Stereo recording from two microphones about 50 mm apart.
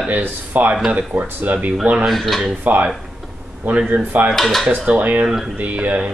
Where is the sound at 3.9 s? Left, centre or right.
Right.